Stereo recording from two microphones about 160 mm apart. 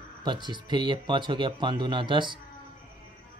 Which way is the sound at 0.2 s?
30° right (ahead or behind).